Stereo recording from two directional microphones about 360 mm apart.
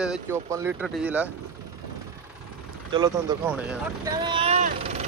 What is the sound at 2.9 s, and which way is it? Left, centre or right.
Speech, centre.